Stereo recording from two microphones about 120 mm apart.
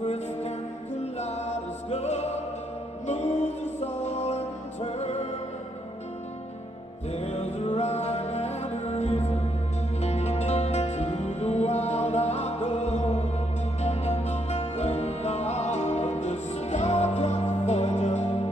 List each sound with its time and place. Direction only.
0.0 s music: 65° left (ahead or behind)
7.1 s music: 65° left (ahead or behind)